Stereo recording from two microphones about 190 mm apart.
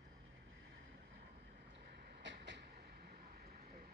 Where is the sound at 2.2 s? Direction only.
65° right (ahead or behind).